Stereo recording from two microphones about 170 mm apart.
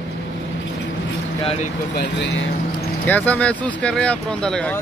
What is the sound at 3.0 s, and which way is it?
Speech, 10° left (ahead or behind).